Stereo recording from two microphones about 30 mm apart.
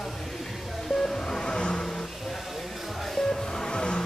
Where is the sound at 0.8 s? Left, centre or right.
Centre.